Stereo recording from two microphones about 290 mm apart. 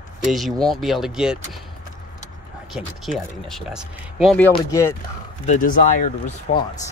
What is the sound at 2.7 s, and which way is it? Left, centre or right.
Speech, centre.